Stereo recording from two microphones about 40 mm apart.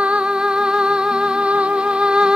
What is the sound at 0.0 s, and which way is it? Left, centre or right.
Music, right.